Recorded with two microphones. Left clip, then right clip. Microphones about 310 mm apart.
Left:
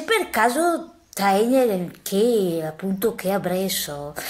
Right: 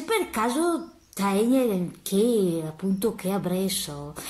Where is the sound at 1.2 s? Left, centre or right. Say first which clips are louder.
Left 6 dB; left.